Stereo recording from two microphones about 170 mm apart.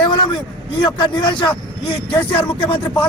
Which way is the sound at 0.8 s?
30° left (ahead or behind).